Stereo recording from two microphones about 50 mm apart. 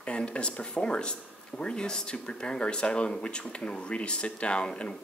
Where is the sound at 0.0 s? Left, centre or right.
Left.